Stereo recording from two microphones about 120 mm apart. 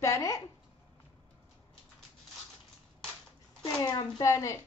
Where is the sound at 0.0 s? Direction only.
25° left (ahead or behind).